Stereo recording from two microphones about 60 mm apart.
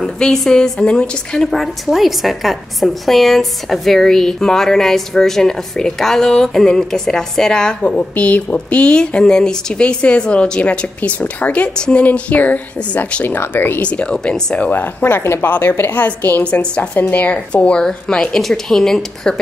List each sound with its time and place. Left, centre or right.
0.0 s a woman's voice: centre
7.8 s a woman's voice: left
13.8 s a woman's voice: centre
15.0 s a woman's voice: left
16.4 s a woman's voice: centre